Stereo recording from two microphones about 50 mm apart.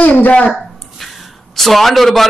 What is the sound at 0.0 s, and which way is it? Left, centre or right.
Speech, left.